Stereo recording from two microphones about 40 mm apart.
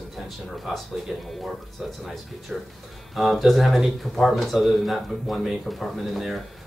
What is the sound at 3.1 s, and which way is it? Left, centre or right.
Speech, centre.